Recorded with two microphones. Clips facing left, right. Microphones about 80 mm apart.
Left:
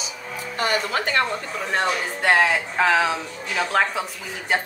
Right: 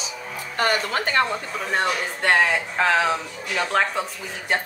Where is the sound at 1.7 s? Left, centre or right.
Centre.